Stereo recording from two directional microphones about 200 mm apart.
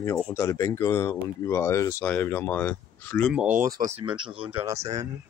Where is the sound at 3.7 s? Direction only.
35° right (ahead or behind).